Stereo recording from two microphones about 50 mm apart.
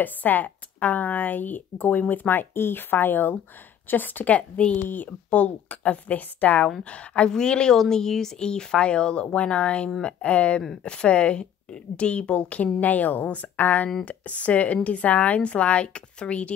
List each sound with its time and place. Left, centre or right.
0.0 s speech: left
4.8 s speech: left